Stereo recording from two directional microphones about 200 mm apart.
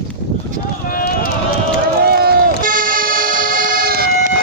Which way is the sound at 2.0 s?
50° right (ahead or behind).